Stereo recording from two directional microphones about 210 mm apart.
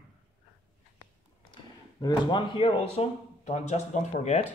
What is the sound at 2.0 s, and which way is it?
Speech, 20° left (ahead or behind).